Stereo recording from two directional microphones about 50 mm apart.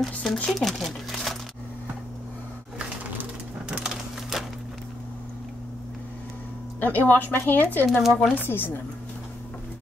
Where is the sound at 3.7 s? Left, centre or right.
Centre.